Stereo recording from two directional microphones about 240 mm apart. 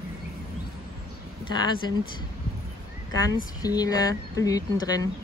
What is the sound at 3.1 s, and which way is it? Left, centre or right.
Speech, centre.